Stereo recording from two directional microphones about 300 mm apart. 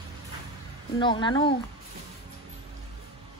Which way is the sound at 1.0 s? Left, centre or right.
Centre.